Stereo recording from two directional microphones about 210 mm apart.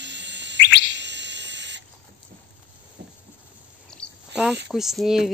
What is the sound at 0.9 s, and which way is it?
Owl, 55° right (ahead or behind).